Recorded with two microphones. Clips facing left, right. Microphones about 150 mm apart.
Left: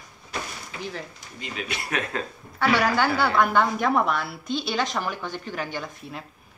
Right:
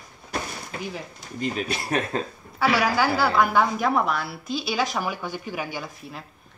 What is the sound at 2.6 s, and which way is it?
A woman's voice, 5° right (ahead or behind).